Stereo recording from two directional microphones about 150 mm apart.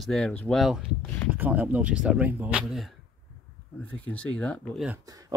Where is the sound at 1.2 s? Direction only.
10° right (ahead or behind).